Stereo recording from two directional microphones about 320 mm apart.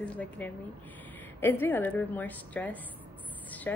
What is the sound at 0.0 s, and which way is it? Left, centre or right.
Speech, centre.